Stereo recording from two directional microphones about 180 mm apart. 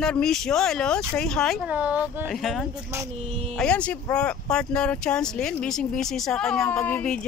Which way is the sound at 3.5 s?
5° left (ahead or behind).